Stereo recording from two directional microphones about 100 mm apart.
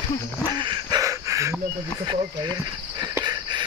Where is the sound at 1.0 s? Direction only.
30° right (ahead or behind).